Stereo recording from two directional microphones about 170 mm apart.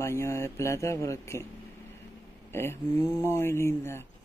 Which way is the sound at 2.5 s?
15° left (ahead or behind).